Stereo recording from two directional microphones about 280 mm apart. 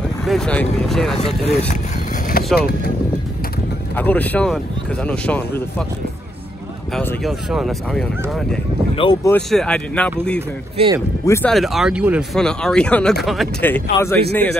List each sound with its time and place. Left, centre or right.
0.2 s speech: centre
1.1 s speech: left
2.4 s vehicle: left
3.9 s speech: centre
7.0 s speech: centre
8.9 s speech: centre
10.8 s speech: centre
11.2 s speech: centre